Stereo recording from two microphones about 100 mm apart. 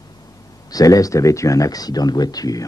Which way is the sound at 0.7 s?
35° left (ahead or behind).